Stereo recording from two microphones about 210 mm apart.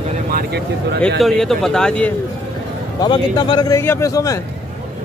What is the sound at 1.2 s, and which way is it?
Speech, centre (ahead or behind).